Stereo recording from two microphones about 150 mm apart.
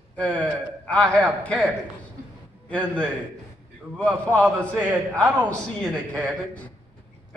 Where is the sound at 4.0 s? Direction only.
5° left (ahead or behind).